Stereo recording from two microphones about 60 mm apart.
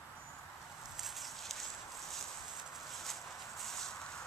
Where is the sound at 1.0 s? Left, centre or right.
Centre.